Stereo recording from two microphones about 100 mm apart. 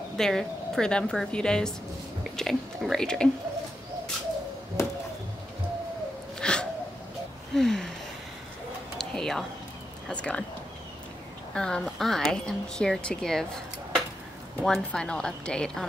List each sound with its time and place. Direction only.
0.2 s a woman's voice: 5° left (ahead or behind)
4.8 s a sound: 25° left (ahead or behind)
6.4 s sneeze: 10° left (ahead or behind)
7.5 s gasp: 5° left (ahead or behind)
8.9 s a sound: 5° left (ahead or behind)
10.0 s a woman's voice: 10° left (ahead or behind)
11.5 s speech: 5° left (ahead or behind)
14.6 s a woman's voice: 5° left (ahead or behind)